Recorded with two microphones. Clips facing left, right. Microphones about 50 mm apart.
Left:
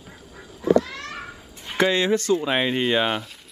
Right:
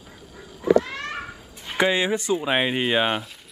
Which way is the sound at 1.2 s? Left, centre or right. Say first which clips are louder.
Right 1 dB; centre.